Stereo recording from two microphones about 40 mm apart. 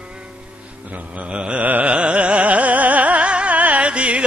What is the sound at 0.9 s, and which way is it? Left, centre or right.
Speech, right.